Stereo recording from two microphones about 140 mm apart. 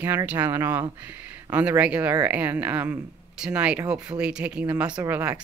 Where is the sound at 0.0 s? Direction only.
15° right (ahead or behind).